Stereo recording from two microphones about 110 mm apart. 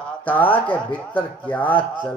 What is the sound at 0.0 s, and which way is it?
Speech, 15° left (ahead or behind).